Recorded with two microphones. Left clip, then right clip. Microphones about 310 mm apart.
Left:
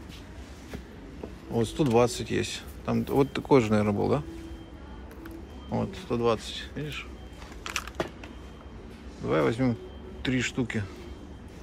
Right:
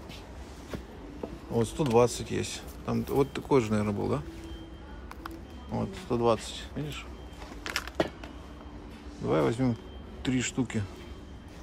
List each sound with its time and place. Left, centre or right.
1.5 s speech: centre
5.7 s speech: centre
7.6 s a sound: right
9.2 s speech: centre